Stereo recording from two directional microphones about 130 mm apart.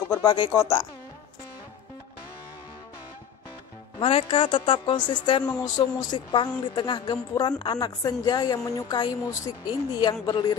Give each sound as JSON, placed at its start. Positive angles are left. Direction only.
{"t": 0.2, "sound": "a woman's voice", "side_deg": 40}
{"t": 4.0, "sound": "a woman's voice", "side_deg": 45}